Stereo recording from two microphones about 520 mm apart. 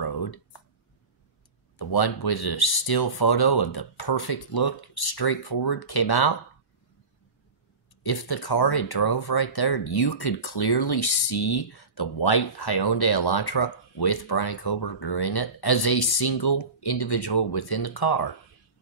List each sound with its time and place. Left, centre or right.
0.0 s a sound: left
1.8 s speech: left
8.0 s speech: left